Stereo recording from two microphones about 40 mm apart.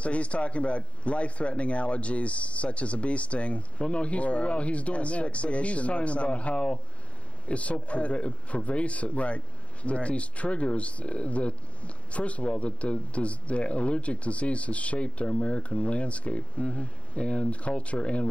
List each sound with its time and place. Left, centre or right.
0.0 s a man's voice: left